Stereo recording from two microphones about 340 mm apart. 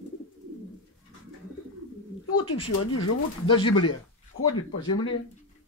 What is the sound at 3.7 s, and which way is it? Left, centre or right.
Speech, left.